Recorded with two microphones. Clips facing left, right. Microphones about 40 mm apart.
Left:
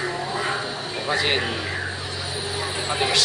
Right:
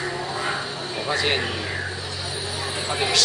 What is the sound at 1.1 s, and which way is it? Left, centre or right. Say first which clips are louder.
Speech: left 1 dB; centre.